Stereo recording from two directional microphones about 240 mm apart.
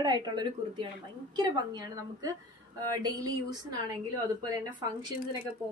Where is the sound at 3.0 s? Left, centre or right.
Centre.